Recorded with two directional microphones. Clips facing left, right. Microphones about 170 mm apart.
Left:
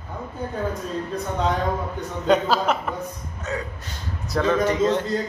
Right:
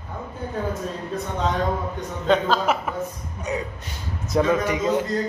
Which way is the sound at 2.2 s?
Centre (ahead or behind).